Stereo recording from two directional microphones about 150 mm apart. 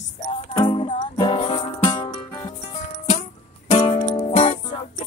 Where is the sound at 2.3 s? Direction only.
20° left (ahead or behind).